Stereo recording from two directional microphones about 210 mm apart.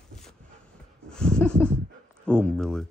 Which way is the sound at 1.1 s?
5° left (ahead or behind).